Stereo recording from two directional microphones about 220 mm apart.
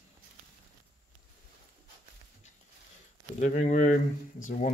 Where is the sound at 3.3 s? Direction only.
35° left (ahead or behind).